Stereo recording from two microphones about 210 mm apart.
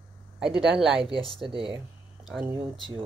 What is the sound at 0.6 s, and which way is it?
Speech, centre (ahead or behind).